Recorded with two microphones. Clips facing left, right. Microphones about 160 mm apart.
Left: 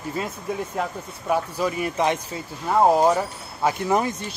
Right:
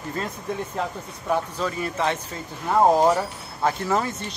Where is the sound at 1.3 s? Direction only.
15° left (ahead or behind).